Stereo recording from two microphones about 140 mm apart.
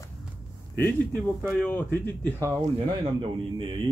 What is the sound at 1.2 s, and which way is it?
Speech, 10° left (ahead or behind).